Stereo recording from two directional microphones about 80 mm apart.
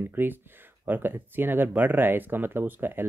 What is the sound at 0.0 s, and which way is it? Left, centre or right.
Speech, right.